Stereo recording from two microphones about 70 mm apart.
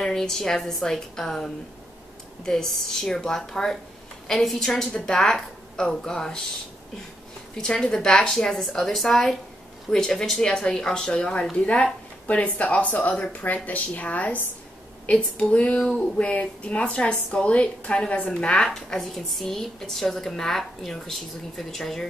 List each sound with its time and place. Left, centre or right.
0.0 s speech: centre
7.5 s a woman's voice: centre